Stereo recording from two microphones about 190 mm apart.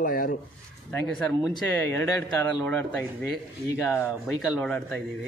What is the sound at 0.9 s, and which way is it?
A man's voice, centre (ahead or behind).